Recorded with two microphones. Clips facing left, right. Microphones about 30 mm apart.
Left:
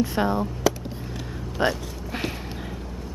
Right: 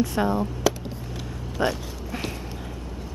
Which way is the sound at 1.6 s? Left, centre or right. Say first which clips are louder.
Left 1 dB; left.